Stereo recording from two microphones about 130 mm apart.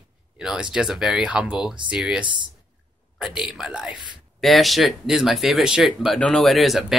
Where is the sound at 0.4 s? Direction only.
5° right (ahead or behind).